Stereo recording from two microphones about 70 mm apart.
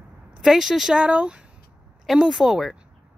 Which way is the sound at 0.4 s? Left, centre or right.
Centre.